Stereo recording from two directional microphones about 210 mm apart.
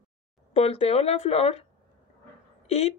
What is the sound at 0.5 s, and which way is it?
Speech, 30° left (ahead or behind).